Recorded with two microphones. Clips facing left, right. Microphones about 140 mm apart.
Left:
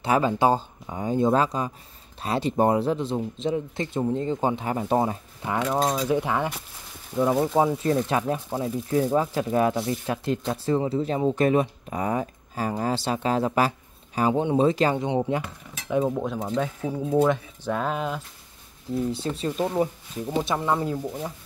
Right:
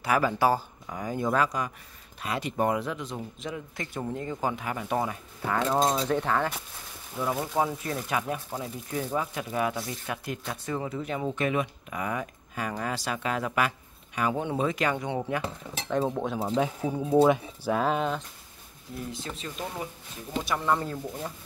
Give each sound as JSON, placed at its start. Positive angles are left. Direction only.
{"t": 0.0, "sound": "speech", "side_deg": 25}
{"t": 7.2, "sound": "speech", "side_deg": 5}
{"t": 7.5, "sound": "speech", "side_deg": 25}
{"t": 15.4, "sound": "speech", "side_deg": -25}
{"t": 16.1, "sound": "speech", "side_deg": 0}
{"t": 16.4, "sound": "speech", "side_deg": -10}
{"t": 19.1, "sound": "speech", "side_deg": 35}